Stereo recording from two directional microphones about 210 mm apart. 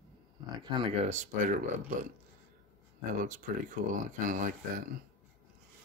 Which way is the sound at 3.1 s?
40° right (ahead or behind).